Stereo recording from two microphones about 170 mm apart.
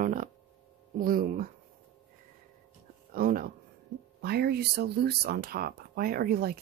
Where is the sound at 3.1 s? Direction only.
55° right (ahead or behind).